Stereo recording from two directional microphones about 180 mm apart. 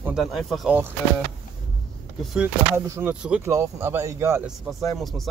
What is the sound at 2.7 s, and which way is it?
Speech, 15° right (ahead or behind).